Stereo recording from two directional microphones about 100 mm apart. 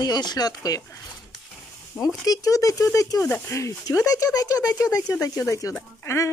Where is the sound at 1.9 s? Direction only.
25° left (ahead or behind).